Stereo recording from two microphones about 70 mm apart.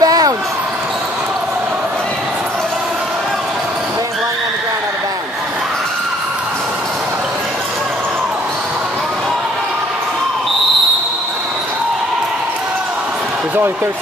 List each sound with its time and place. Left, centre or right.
0.0 s basketball bounce: right